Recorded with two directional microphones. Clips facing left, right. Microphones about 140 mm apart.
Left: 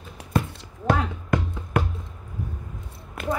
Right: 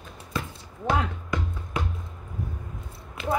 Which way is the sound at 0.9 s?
55° left (ahead or behind).